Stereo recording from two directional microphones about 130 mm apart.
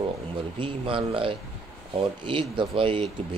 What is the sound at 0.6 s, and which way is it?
Speech, 40° right (ahead or behind).